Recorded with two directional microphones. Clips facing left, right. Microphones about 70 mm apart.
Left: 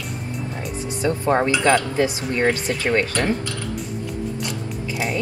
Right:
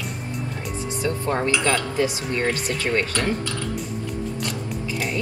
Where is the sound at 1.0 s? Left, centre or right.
Left.